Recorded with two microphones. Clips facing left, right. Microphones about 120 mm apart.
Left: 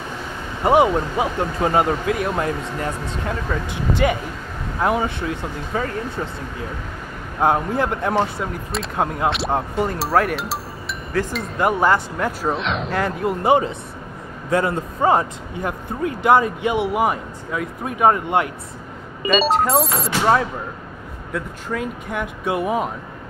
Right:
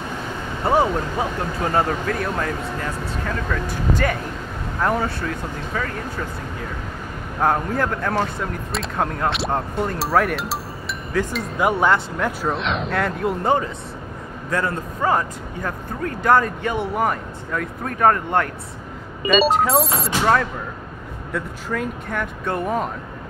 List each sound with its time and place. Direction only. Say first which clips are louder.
0.7 s speech: left 3 dB; 15° left (ahead or behind)
4.8 s speech: left 1 dB; 15° left (ahead or behind)
5.7 s speech: left 3 dB; 30° left (ahead or behind)
7.3 s speech: left 2 dB; 15° left (ahead or behind)
8.4 s speech: even; 5° left (ahead or behind)
13.5 s speech: left 7 dB; 20° left (ahead or behind)
19.2 s speech: right 1 dB; centre (ahead or behind)
21.3 s speech: even; centre (ahead or behind)